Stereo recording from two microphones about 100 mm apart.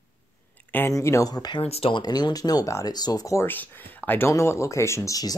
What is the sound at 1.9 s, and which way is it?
Speech, 45° left (ahead or behind).